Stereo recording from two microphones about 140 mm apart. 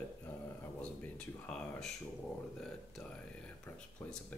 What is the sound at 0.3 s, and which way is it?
Speech, 10° left (ahead or behind).